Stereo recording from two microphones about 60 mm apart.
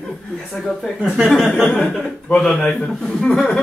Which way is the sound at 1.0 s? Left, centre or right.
Centre.